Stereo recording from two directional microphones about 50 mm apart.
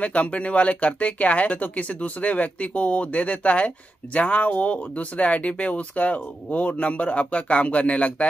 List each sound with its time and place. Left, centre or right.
0.0 s speech: left